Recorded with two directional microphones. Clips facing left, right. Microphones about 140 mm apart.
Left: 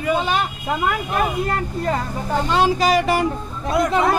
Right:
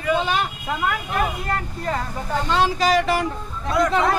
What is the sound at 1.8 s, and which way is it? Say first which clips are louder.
Speech: left 1 dB; 10° left (ahead or behind).